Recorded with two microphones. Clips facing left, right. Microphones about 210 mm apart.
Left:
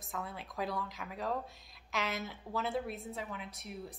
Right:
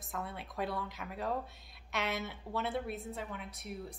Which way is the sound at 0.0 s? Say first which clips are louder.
Right 1 dB; centre (ahead or behind).